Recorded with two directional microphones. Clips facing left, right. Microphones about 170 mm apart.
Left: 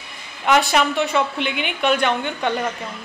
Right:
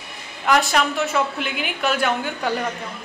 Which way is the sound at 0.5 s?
Centre (ahead or behind).